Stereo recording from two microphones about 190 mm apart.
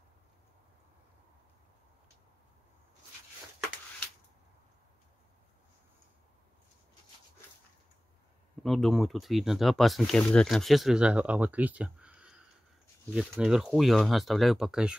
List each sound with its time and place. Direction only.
8.6 s speech: centre (ahead or behind)